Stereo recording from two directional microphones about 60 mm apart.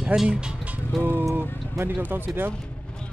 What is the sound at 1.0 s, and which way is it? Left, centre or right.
Speech, right.